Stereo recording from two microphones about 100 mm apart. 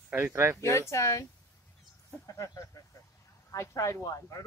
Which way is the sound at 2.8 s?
35° left (ahead or behind).